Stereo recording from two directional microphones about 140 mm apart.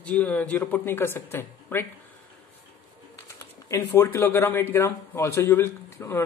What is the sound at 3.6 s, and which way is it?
A man's voice, 20° left (ahead or behind).